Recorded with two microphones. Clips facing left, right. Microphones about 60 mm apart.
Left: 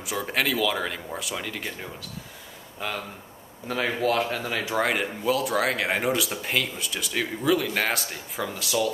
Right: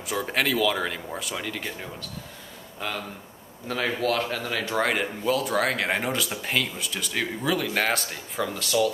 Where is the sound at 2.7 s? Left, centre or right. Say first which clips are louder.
Even; centre.